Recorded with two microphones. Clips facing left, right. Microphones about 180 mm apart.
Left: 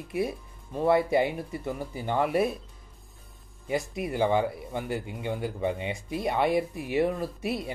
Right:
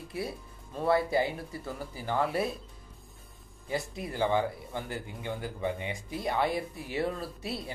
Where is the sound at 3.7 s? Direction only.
20° left (ahead or behind).